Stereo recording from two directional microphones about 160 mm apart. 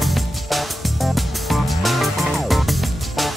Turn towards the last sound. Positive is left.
turn(degrees=0)  # may be behind; listen again after turning